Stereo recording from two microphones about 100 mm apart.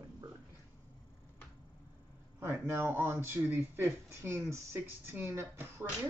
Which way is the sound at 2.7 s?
20° right (ahead or behind).